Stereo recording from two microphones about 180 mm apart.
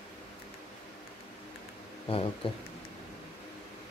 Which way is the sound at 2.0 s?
30° left (ahead or behind).